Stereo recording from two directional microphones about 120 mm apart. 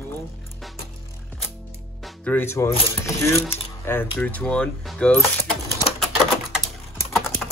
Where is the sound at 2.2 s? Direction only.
15° left (ahead or behind).